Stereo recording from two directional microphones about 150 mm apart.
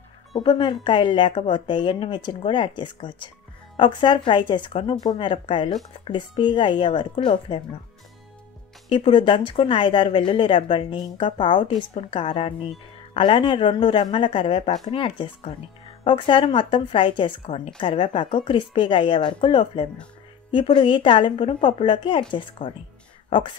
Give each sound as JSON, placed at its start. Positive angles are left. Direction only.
{"t": 0.4, "sound": "speech", "side_deg": 35}
{"t": 8.8, "sound": "speech", "side_deg": 35}